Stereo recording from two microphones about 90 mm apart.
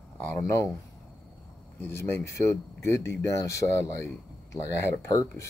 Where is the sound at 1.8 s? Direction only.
25° left (ahead or behind).